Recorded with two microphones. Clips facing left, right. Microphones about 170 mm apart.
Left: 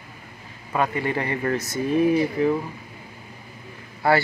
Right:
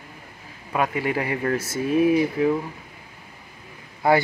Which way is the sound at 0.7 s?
5° right (ahead or behind).